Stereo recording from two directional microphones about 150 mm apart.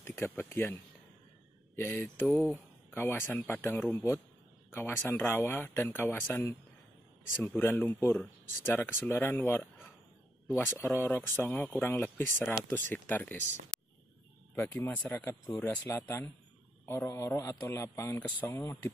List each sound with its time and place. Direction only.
0.0 s speech: 15° left (ahead or behind)
1.8 s a man's voice: 15° left (ahead or behind)
10.8 s speech: 15° left (ahead or behind)
14.5 s speech: 15° left (ahead or behind)
15.4 s a man's voice: 25° left (ahead or behind)
16.8 s speech: 20° left (ahead or behind)